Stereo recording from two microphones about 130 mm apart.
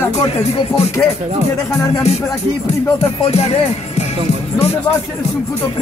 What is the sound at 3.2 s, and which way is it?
Speech, 55° left (ahead or behind).